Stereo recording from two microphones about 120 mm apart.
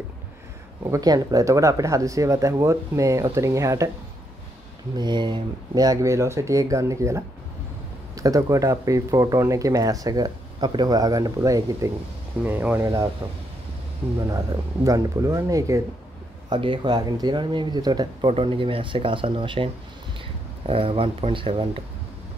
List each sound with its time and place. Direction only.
0.8 s speech: 30° right (ahead or behind)
4.9 s speech: 40° right (ahead or behind)
12.4 s speech: 15° right (ahead or behind)
12.8 s speech: 30° right (ahead or behind)
14.2 s speech: 30° right (ahead or behind)
16.4 s speech: 40° right (ahead or behind)
18.3 s speech: 50° right (ahead or behind)